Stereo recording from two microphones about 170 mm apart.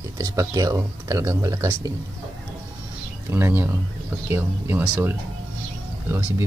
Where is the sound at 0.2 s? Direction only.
20° right (ahead or behind).